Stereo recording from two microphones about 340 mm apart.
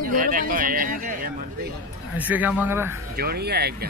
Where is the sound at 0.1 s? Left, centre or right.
Right.